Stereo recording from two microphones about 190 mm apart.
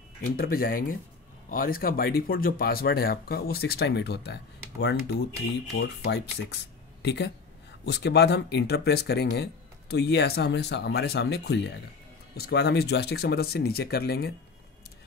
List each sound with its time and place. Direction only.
0.2 s speech: 50° left (ahead or behind)